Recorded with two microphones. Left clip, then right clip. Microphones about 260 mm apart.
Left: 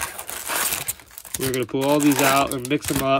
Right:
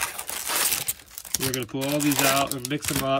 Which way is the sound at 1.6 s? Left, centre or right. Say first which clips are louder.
Left 10 dB; centre.